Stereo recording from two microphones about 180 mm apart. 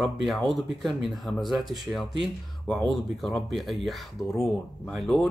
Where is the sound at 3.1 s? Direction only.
Centre (ahead or behind).